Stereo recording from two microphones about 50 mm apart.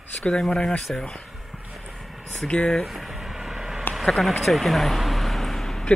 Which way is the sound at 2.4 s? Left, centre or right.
Centre.